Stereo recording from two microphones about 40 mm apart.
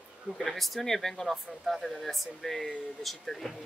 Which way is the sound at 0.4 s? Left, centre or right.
Centre.